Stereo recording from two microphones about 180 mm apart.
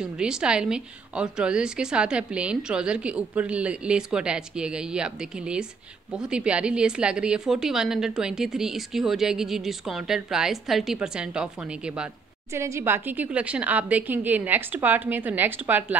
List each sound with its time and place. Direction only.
0.0 s a woman's voice: 5° right (ahead or behind)